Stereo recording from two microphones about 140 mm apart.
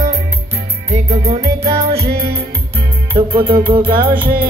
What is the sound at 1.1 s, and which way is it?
Music, 50° right (ahead or behind).